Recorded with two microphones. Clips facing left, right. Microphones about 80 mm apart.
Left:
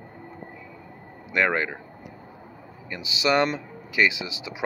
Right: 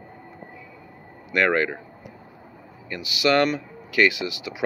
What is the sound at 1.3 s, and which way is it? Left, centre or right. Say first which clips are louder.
Speech: right 3 dB; centre.